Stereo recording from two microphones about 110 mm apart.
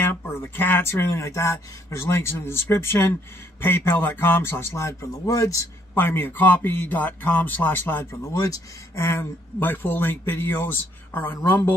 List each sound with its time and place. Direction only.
0.0 s a man's voice: 20° left (ahead or behind)
5.9 s a man's voice: 20° left (ahead or behind)